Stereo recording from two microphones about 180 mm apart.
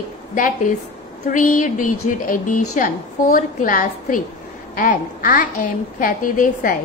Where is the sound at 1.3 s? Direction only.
45° left (ahead or behind).